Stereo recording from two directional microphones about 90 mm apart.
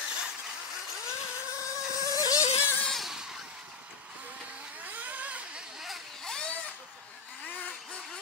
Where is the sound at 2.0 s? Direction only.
40° left (ahead or behind).